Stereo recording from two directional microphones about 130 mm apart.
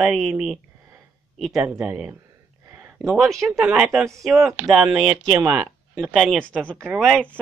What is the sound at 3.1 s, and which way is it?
Speech, centre (ahead or behind).